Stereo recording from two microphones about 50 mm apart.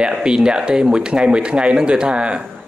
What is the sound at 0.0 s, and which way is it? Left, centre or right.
Speech, centre.